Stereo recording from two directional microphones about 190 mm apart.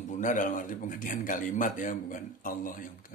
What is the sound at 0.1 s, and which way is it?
A man's voice, 40° left (ahead or behind).